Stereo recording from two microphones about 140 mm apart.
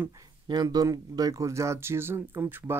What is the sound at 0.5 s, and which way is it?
Speech, 30° right (ahead or behind).